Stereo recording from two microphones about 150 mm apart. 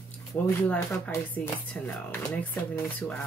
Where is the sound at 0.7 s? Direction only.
10° left (ahead or behind).